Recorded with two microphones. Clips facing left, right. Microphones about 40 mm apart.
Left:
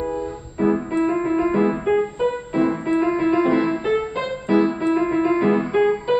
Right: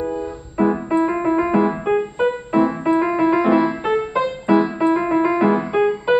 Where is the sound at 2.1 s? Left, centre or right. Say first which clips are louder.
Right 3 dB; right.